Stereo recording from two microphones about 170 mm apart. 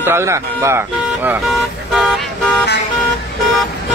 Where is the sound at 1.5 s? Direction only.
Centre (ahead or behind).